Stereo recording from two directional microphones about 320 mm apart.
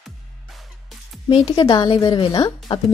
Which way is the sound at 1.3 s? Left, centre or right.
Centre.